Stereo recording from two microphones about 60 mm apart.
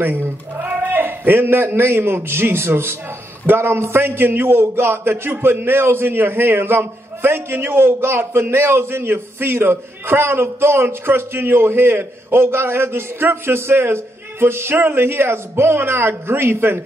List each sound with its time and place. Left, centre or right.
0.0 s a man's voice: right